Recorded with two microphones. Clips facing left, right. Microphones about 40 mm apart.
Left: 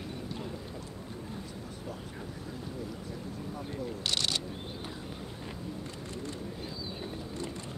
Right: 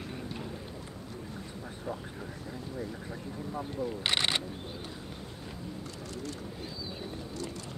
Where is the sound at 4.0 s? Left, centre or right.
Right.